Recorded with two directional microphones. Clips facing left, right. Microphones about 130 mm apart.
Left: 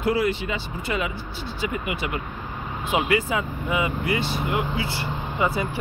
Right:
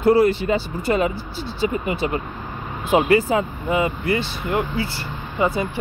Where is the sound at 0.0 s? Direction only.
35° right (ahead or behind).